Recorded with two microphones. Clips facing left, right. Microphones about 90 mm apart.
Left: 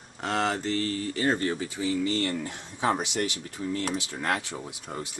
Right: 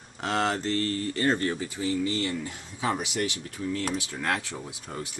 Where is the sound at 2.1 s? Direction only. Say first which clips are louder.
Left 1 dB; 45° left (ahead or behind).